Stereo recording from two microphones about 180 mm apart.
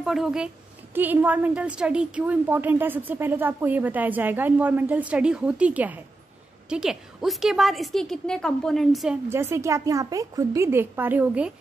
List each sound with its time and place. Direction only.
0.0 s a woman's voice: centre (ahead or behind)
9.3 s a woman's voice: 15° right (ahead or behind)